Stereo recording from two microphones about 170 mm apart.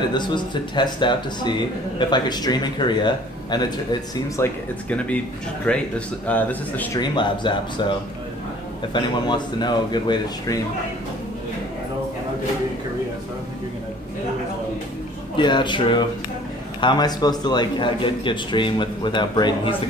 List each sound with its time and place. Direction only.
0.1 s a man's voice: 25° left (ahead or behind)
4.8 s speech: 5° left (ahead or behind)
7.0 s a man's voice: 25° left (ahead or behind)
8.9 s a man's voice: 25° left (ahead or behind)
15.3 s a man's voice: 25° left (ahead or behind)